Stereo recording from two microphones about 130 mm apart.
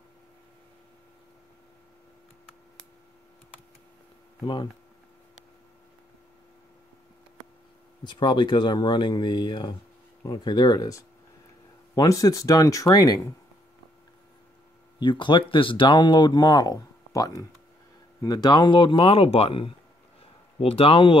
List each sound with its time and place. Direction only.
8.0 s speech: 35° left (ahead or behind)
15.0 s speech: 40° left (ahead or behind)